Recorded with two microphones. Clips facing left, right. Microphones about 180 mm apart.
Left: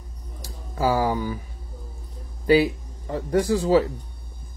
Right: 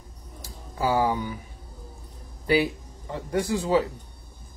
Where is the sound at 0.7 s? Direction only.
35° left (ahead or behind).